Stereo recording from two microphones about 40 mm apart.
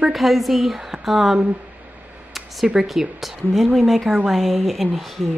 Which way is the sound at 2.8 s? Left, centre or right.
Centre.